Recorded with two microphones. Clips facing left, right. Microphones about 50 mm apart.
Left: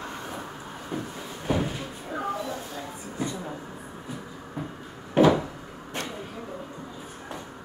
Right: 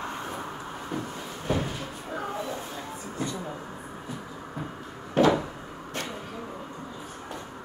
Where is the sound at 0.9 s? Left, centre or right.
Centre.